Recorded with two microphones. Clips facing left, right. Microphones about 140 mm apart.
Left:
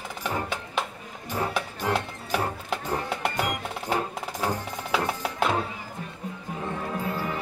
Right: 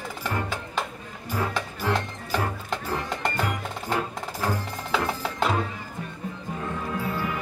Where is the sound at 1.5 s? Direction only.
10° left (ahead or behind).